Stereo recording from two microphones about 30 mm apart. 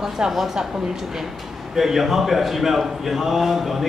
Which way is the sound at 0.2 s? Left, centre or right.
Right.